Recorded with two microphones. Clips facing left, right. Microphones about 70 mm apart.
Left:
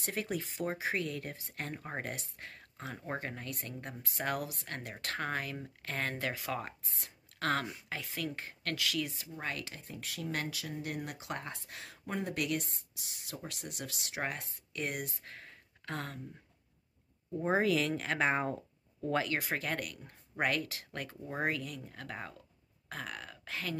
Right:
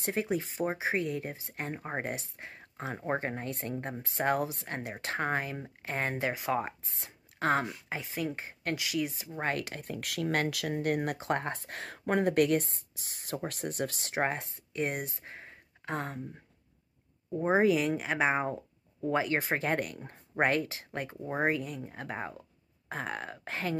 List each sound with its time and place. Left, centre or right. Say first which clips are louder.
0.0 s speech: right 6 dB; right
9.3 s speech: right 7 dB; right
9.7 s speech: right 7 dB; right
10.3 s speech: right 8 dB; right
12.4 s speech: right 7 dB; right
17.3 s speech: right 4 dB; right